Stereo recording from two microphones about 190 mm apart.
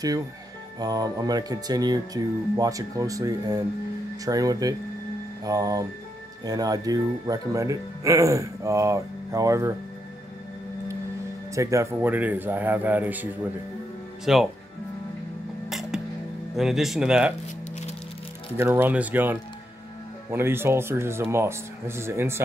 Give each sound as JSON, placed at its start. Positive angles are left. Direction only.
{"t": 0.7, "sound": "speech", "side_deg": -20}
{"t": 11.5, "sound": "speech", "side_deg": -15}
{"t": 15.7, "sound": "music", "side_deg": 0}
{"t": 16.5, "sound": "speech", "side_deg": 0}
{"t": 18.6, "sound": "speech", "side_deg": -10}